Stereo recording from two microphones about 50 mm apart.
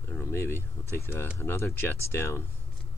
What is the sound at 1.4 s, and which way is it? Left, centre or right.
Speech, left.